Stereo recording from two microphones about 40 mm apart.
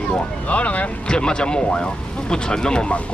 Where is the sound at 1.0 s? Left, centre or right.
Left.